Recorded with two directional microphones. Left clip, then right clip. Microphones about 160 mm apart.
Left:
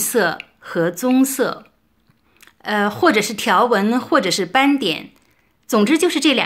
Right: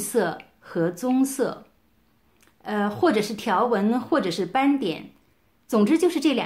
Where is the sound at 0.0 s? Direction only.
10° left (ahead or behind).